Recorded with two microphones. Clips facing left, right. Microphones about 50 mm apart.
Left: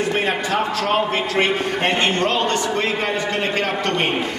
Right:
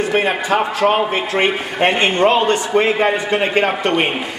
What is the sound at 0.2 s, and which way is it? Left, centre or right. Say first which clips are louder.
A man's voice: right 4 dB; centre.